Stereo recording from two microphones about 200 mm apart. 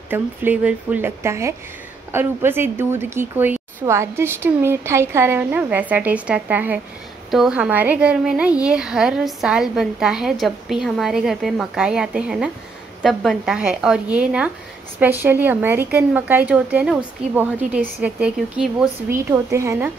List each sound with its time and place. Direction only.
0.1 s a woman's voice: 10° right (ahead or behind)